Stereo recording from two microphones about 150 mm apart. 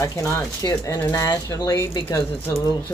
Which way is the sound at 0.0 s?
20° left (ahead or behind).